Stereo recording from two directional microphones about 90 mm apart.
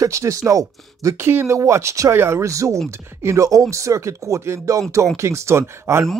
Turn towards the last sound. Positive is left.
turn(degrees=-30)  # may be behind; listen again after turning